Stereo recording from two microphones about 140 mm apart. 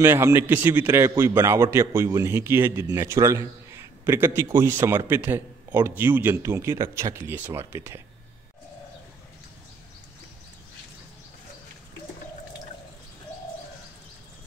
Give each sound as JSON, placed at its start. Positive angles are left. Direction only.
{"t": 0.0, "sound": "a man's voice", "side_deg": -15}